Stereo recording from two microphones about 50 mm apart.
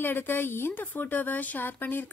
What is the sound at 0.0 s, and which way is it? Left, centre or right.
A woman's voice, left.